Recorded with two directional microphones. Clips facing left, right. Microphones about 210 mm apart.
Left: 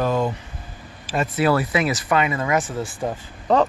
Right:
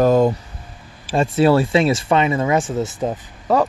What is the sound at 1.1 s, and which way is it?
Speech, 30° right (ahead or behind).